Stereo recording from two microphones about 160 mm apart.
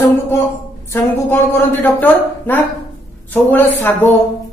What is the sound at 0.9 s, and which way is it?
A woman's voice, 15° left (ahead or behind).